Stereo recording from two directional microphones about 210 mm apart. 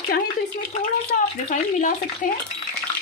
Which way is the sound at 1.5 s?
40° left (ahead or behind).